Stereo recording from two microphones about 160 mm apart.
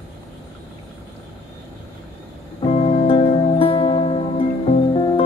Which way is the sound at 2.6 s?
40° left (ahead or behind).